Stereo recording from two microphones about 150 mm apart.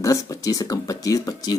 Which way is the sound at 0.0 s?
20° left (ahead or behind).